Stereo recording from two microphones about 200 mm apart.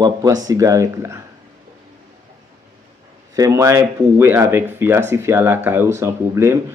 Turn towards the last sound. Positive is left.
turn(degrees=-15)  # may be behind; listen again after turning